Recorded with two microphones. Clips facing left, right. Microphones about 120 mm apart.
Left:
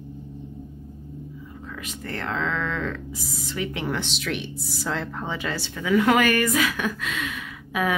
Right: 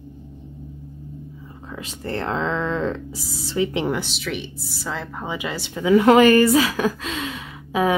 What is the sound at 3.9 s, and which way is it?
Speech, 5° right (ahead or behind).